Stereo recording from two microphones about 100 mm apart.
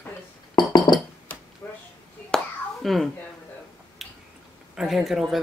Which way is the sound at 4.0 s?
Centre (ahead or behind).